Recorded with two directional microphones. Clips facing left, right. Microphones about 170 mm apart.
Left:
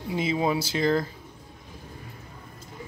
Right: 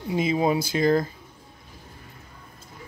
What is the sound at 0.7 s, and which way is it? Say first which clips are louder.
Speech: right 3 dB; 30° right (ahead or behind).